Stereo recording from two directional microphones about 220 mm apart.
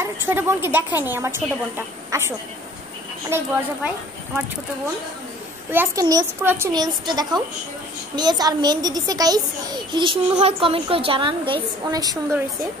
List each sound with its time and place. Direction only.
0.0 s a woman's voice: 10° right (ahead or behind)
5.7 s a woman's voice: 10° right (ahead or behind)